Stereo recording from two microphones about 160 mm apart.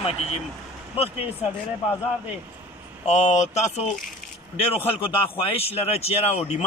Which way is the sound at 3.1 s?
45° left (ahead or behind).